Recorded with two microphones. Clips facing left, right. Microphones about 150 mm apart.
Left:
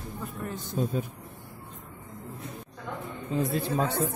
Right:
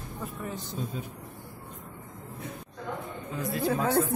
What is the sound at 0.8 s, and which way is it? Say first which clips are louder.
Speech: left 8 dB; 55° left (ahead or behind).